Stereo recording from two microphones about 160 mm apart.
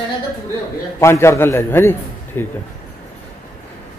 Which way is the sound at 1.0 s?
15° left (ahead or behind).